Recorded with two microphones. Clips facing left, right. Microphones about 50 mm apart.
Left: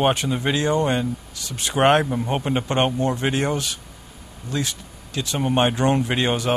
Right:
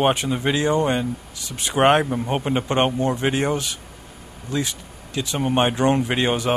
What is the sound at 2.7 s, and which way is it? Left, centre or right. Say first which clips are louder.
Speech: right 1 dB; centre.